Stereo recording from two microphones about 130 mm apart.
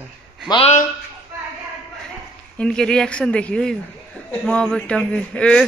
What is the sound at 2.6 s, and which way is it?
A man's voice, 5° left (ahead or behind).